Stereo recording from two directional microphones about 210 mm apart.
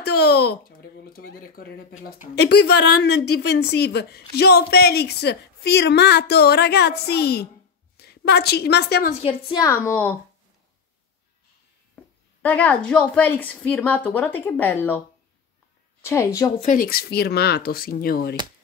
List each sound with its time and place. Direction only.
0.0 s a woman's voice: 50° left (ahead or behind)
9.1 s a woman's voice: 30° left (ahead or behind); by 10.1 s 10° left (ahead or behind)
11.9 s a woman's voice: 5° left (ahead or behind)
16.0 s a woman's voice: 10° left (ahead or behind)
16.6 s a woman's voice: 40° left (ahead or behind)